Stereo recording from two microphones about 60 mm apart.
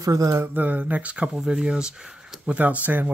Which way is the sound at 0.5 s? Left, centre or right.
Right.